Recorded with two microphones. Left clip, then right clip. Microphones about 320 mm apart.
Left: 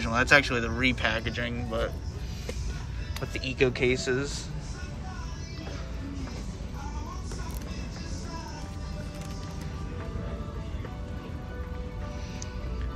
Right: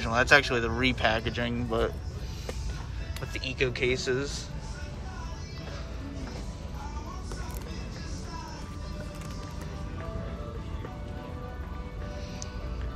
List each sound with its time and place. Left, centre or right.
0.0 s speech: centre
3.3 s speech: centre